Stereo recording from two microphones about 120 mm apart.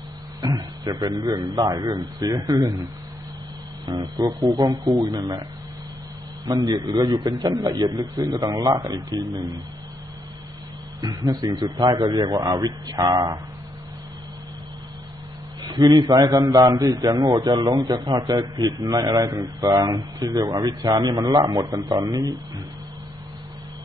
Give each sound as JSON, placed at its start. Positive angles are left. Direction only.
{"t": 0.4, "sound": "a man's voice", "side_deg": -30}
{"t": 4.6, "sound": "a man's voice", "side_deg": -35}
{"t": 6.5, "sound": "a man's voice", "side_deg": -45}
{"t": 6.8, "sound": "a man's voice", "side_deg": -30}
{"t": 11.0, "sound": "a man's voice", "side_deg": -30}
{"t": 15.7, "sound": "a man's voice", "side_deg": -30}